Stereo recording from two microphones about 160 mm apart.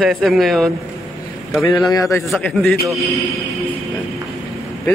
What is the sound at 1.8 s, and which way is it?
Speech, 20° left (ahead or behind).